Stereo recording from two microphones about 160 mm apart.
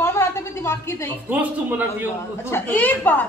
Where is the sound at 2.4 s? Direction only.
10° left (ahead or behind).